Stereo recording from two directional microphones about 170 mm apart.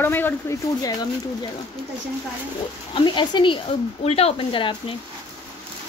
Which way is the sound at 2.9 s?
25° left (ahead or behind).